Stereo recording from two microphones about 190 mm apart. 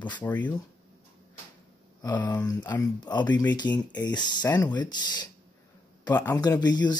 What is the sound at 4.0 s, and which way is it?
Speech, 20° left (ahead or behind).